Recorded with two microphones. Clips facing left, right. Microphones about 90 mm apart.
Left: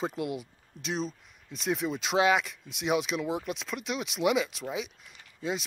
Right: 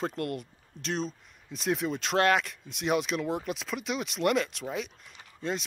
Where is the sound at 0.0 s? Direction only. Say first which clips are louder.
Even; 5° left (ahead or behind).